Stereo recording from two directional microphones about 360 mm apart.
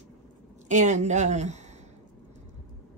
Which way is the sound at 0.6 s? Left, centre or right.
Centre.